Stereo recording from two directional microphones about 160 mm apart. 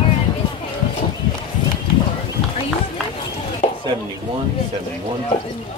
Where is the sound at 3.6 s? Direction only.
45° left (ahead or behind).